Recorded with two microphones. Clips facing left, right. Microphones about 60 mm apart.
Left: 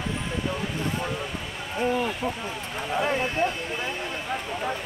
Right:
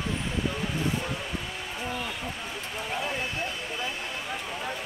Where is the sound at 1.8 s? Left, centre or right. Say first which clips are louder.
Left 10 dB; left.